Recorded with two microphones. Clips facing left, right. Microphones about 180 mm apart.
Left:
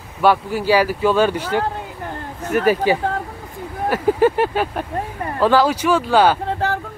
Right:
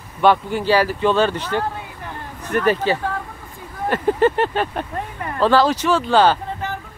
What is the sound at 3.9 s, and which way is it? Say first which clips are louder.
A man's voice: left 1 dB; 10° left (ahead or behind).